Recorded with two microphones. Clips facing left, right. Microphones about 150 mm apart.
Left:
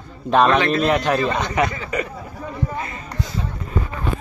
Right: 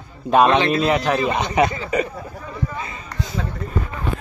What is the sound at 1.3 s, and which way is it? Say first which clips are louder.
Speech: right 2 dB; 20° right (ahead or behind).